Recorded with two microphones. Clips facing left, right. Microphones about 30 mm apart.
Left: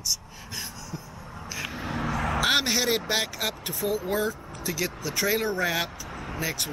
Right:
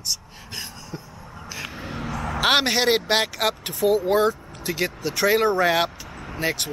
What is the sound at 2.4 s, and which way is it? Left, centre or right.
Speech, right.